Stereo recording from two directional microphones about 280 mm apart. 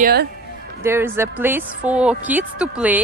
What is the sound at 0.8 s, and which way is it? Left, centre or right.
Speech, centre.